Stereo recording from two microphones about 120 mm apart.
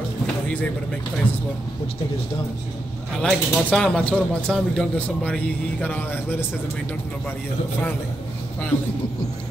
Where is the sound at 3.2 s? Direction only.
10° left (ahead or behind).